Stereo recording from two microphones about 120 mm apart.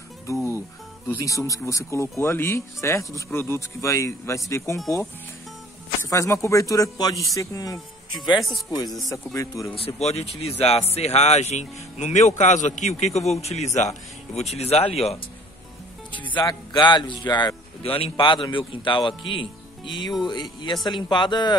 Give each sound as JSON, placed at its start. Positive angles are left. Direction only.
{"t": 0.3, "sound": "music", "side_deg": 25}
{"t": 1.0, "sound": "speech", "side_deg": 25}
{"t": 6.0, "sound": "speech", "side_deg": 25}
{"t": 8.4, "sound": "speech", "side_deg": 0}
{"t": 9.0, "sound": "speech", "side_deg": 25}
{"t": 9.8, "sound": "speech", "side_deg": 60}
{"t": 16.4, "sound": "speech", "side_deg": 40}
{"t": 17.8, "sound": "a man's voice", "side_deg": 50}